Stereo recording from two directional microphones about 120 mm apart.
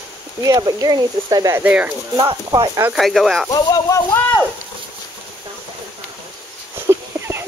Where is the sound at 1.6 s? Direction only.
10° right (ahead or behind).